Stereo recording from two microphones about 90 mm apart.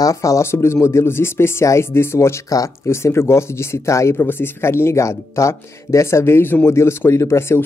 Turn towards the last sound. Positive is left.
turn(degrees=30)  # may be behind; listen again after turning